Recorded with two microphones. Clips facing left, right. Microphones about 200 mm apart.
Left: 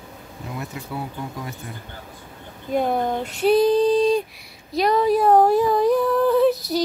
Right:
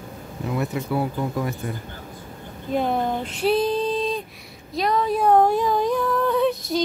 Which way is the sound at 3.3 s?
Centre (ahead or behind).